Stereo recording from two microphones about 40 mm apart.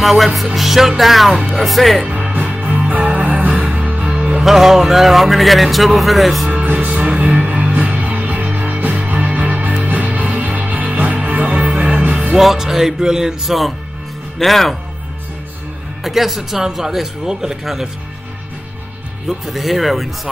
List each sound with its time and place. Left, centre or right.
0.0 s speech: centre
2.6 s music: right
4.4 s speech: centre
6.5 s music: right
6.9 s music: right
11.7 s music: right
12.4 s music: centre
14.4 s speech: centre
16.0 s speech: centre
16.6 s music: centre
19.2 s speech: centre